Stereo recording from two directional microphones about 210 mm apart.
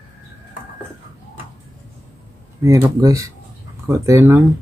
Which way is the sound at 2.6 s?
15° right (ahead or behind).